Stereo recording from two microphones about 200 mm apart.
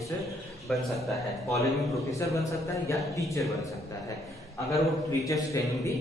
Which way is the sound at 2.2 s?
15° left (ahead or behind).